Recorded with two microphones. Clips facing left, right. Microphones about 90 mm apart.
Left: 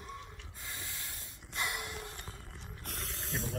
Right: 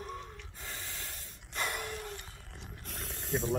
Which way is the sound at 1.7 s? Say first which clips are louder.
Right 3 dB; 20° left (ahead or behind).